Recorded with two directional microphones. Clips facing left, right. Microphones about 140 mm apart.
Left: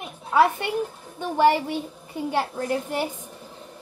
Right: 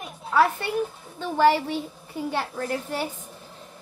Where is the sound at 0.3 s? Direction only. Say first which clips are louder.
Left 2 dB; 15° left (ahead or behind).